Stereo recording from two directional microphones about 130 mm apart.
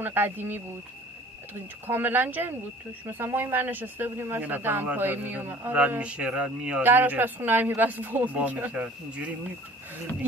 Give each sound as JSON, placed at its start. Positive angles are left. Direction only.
{"t": 0.0, "sound": "speech", "side_deg": -15}